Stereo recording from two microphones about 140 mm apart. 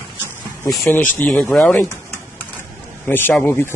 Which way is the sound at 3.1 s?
15° left (ahead or behind).